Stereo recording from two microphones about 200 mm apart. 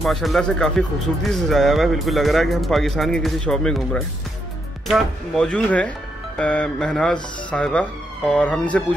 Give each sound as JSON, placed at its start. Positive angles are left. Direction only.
{"t": 0.0, "sound": "speech", "side_deg": 0}